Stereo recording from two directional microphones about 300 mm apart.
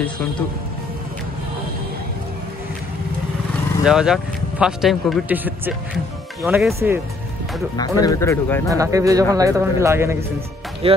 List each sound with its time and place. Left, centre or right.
3.8 s speech: centre
7.7 s speech: centre
8.6 s speech: centre
10.8 s speech: centre